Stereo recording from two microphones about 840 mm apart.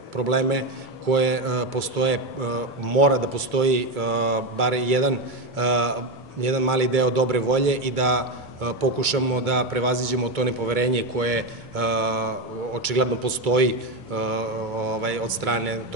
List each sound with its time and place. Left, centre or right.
0.3 s a man's voice: right